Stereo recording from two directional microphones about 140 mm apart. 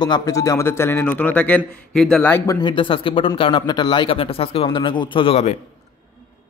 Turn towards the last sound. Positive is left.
turn(degrees=45)  # may be behind; listen again after turning